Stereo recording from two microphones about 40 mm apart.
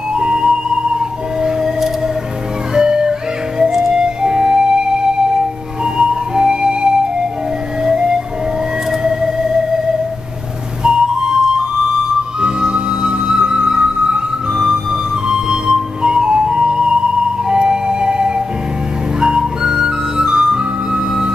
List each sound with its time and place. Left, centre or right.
0.1 s music: right
2.7 s music: centre
5.9 s music: right
10.8 s music: centre
19.1 s flute: centre